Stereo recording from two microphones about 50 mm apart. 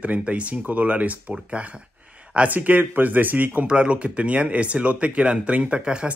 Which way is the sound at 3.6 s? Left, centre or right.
Right.